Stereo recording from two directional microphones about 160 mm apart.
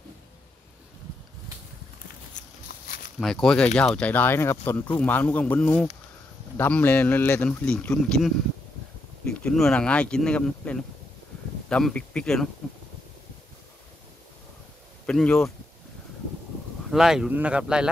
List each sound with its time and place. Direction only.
3.2 s speech: 5° left (ahead or behind)
9.4 s speech: 5° left (ahead or behind)
15.0 s speech: 5° left (ahead or behind)
16.9 s speech: 5° right (ahead or behind)